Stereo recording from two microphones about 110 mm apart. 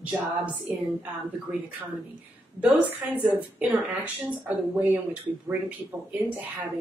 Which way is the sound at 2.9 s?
15° right (ahead or behind).